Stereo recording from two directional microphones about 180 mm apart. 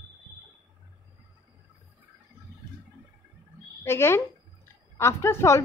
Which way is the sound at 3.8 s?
15° left (ahead or behind).